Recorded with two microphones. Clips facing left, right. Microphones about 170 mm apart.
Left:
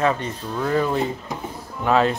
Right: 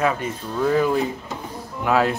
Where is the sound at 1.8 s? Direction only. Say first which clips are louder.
Left 1 dB; 5° right (ahead or behind).